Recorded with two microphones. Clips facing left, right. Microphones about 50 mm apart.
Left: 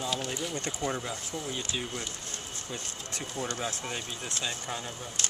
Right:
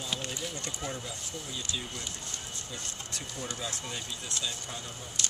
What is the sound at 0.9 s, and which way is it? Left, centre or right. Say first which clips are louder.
Speech: left 5 dB; left.